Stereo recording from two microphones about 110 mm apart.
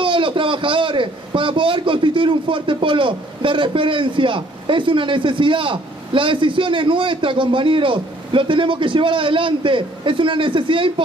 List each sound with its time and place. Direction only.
0.0 s a man's voice: 50° right (ahead or behind)